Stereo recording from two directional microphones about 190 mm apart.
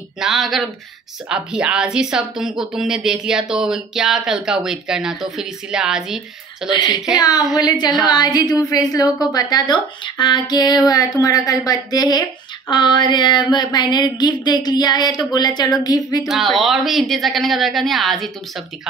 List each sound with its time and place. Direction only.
0.2 s speech: centre (ahead or behind)
6.7 s a woman's voice: 20° left (ahead or behind)
16.3 s speech: centre (ahead or behind)